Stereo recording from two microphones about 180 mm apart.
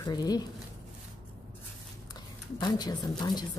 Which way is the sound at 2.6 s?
20° left (ahead or behind).